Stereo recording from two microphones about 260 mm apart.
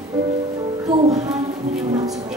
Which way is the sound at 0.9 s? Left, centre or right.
Centre.